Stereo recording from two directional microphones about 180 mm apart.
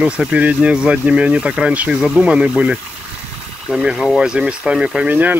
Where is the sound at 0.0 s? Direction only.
5° right (ahead or behind).